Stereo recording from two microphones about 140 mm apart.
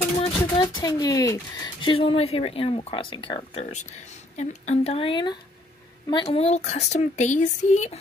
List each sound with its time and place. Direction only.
0.2 s speech: 30° left (ahead or behind)
4.4 s speech: 55° left (ahead or behind); by 6.3 s 30° left (ahead or behind)
6.3 s speech: 50° left (ahead or behind)